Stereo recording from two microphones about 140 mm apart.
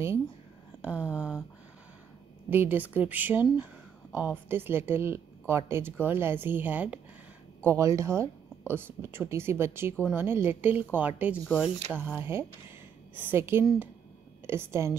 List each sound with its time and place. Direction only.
0.8 s speech: 10° right (ahead or behind)
2.5 s speech: 15° right (ahead or behind)
7.6 s a woman's voice: 20° right (ahead or behind)